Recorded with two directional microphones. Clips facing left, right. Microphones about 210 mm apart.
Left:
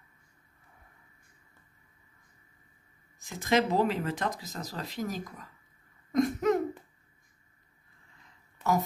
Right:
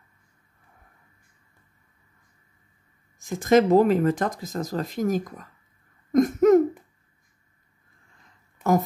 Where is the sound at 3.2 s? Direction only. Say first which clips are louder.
Right 8 dB; 45° right (ahead or behind).